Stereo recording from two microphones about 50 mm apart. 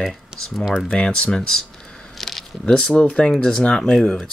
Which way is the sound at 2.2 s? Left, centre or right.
Centre.